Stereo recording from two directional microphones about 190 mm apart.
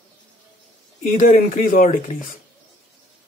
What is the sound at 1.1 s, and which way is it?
Speech, 45° left (ahead or behind).